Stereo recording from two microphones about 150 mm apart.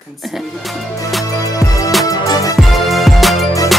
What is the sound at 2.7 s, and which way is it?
Music, centre (ahead or behind).